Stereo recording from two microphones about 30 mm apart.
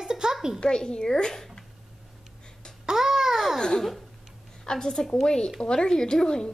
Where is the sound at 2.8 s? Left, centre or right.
Centre.